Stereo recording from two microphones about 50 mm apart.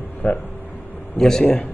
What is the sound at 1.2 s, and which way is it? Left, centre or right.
Speech, centre.